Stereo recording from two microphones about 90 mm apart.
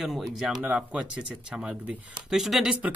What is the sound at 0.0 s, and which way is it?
Speech, centre (ahead or behind).